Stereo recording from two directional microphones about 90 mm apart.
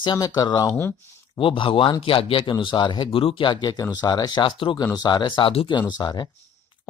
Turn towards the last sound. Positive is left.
turn(degrees=55)  # may be behind; listen again after turning